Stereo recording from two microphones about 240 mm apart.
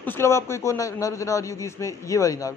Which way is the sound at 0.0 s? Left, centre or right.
Centre.